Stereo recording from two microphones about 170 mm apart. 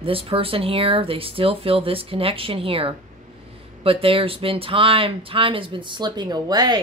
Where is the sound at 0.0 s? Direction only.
35° right (ahead or behind).